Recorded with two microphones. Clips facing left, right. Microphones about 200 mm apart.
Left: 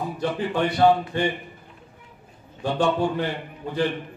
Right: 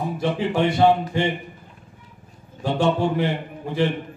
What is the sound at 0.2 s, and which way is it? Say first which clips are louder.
A man's voice: right 3 dB; 20° right (ahead or behind).